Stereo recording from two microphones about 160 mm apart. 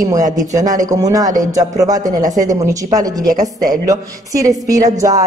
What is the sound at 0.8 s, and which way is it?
A woman's voice, 20° right (ahead or behind).